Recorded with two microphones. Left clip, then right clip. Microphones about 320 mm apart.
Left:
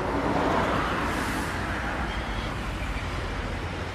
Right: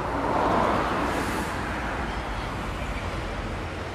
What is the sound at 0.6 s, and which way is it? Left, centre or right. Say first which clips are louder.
Vehicle: right 2 dB; right.